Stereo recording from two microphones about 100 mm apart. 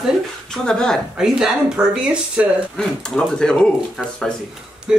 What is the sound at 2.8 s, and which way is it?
Speech, 5° left (ahead or behind).